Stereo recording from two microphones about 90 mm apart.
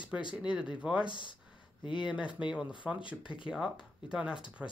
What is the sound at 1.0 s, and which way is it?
Speech, 60° left (ahead or behind).